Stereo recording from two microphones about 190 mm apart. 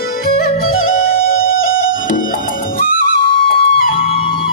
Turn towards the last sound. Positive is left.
turn(degrees=50)  # may be behind; listen again after turning